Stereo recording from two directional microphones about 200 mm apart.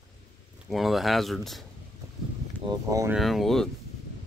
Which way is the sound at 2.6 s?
20° right (ahead or behind).